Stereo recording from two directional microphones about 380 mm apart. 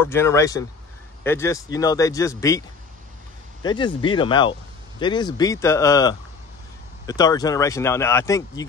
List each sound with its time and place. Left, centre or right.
0.0 s speech: centre
3.6 s speech: centre